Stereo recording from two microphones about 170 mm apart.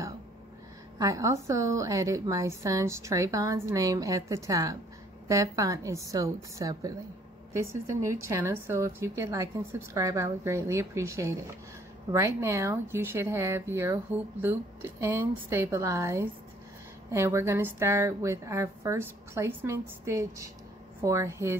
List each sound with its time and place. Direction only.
0.9 s a woman's voice: 20° right (ahead or behind)